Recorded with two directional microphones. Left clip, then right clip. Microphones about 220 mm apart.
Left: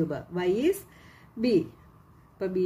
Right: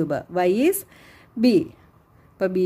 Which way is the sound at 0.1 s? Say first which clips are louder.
Right 7 dB; 40° right (ahead or behind).